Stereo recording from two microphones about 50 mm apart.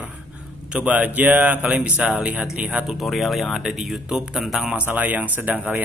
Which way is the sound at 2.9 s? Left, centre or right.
Centre.